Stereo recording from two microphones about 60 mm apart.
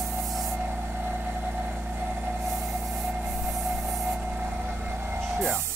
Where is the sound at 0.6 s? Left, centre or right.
Right.